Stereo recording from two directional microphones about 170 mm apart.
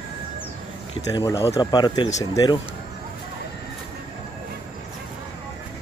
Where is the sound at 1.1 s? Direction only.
20° left (ahead or behind).